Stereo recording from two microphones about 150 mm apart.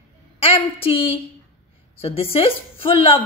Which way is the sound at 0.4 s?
40° left (ahead or behind).